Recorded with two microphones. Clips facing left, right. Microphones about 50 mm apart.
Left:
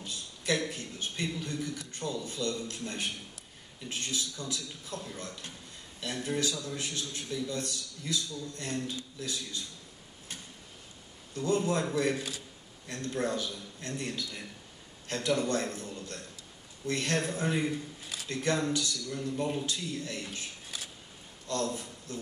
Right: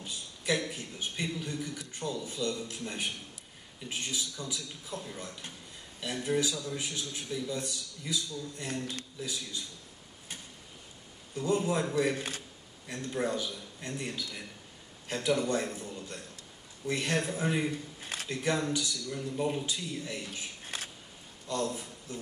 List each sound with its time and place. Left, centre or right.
0.0 s a man's voice: centre
11.3 s a man's voice: centre
12.2 s a man's voice: right
12.8 s a man's voice: centre
18.0 s a sound: right
18.3 s a man's voice: centre
20.6 s a sound: right
21.5 s a man's voice: centre